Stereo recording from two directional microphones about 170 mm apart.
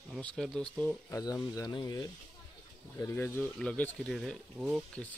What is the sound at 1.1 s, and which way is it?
Speech, 20° left (ahead or behind).